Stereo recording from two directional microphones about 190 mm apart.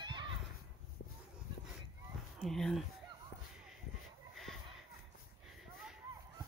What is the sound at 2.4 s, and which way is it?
Speech, centre (ahead or behind).